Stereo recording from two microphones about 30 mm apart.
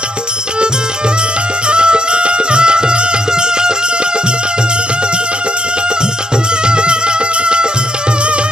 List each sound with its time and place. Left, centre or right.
1.7 s music: right
6.6 s music: right